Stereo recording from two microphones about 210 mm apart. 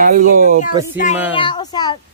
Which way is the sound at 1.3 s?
20° left (ahead or behind).